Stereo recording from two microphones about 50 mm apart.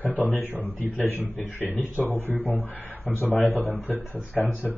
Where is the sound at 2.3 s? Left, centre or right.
Right.